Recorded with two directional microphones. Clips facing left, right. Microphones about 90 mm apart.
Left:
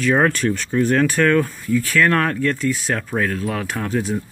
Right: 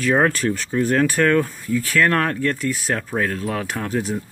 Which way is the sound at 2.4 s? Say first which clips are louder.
Left 2 dB; 45° right (ahead or behind).